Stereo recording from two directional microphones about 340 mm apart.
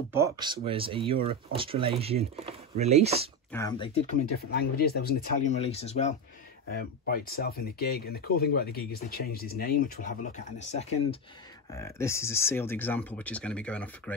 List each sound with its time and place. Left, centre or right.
0.1 s speech: centre
3.5 s speech: centre
11.7 s speech: centre